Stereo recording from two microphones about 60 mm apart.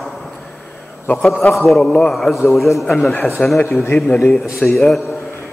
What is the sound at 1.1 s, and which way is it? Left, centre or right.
Speech, centre.